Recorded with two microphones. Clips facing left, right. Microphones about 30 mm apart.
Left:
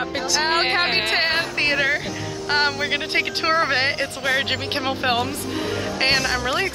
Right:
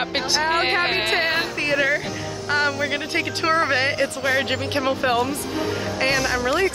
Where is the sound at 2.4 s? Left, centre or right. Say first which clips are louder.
Left 1 dB; left.